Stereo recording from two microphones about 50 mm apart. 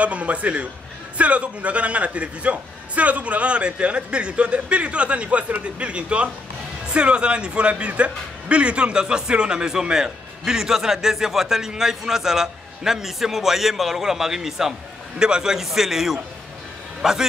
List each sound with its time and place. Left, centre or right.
0.0 s a man's voice: right; by 17.3 s centre